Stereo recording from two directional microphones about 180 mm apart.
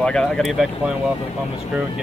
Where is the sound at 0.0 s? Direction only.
5° left (ahead or behind).